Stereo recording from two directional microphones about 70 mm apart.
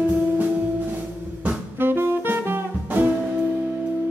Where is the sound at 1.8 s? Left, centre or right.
Right.